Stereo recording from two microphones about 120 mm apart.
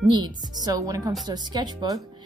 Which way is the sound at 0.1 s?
35° right (ahead or behind).